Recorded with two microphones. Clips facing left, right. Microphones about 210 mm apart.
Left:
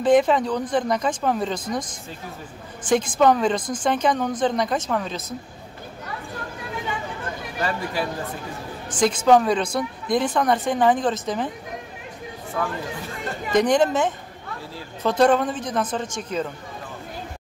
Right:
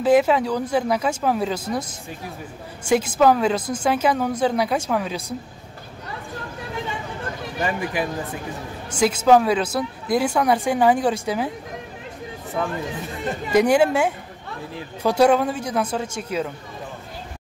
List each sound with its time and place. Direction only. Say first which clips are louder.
0.0 s speech: even; 5° right (ahead or behind)
7.6 s speech: right 2 dB; 15° right (ahead or behind)
12.6 s speech: right 1 dB; 25° right (ahead or behind)
13.5 s speech: right 2 dB; 10° right (ahead or behind)